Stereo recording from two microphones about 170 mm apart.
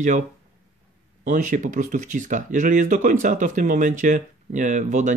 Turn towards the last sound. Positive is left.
turn(degrees=-45)  # may be behind; listen again after turning